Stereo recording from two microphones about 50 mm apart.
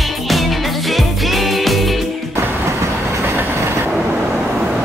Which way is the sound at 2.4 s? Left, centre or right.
Right.